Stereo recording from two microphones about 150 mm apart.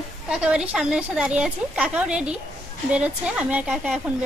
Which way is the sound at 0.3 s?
5° right (ahead or behind).